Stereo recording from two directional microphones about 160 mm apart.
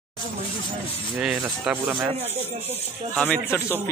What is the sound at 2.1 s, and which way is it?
Speech, 40° right (ahead or behind).